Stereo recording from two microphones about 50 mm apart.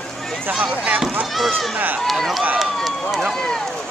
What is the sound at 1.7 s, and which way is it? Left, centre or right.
Run, right.